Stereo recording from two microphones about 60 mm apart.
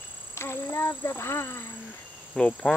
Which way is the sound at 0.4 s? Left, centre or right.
Left.